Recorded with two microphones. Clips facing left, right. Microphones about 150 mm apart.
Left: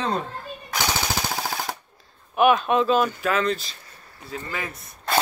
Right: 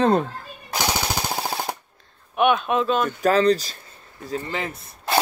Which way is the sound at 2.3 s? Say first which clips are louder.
Left 1 dB; centre (ahead or behind).